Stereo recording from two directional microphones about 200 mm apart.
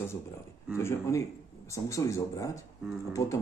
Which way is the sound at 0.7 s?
15° left (ahead or behind).